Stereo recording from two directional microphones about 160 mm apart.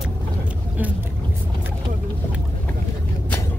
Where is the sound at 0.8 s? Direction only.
10° right (ahead or behind).